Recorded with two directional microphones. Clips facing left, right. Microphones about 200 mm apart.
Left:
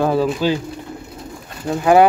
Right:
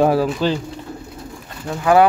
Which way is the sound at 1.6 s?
20° left (ahead or behind).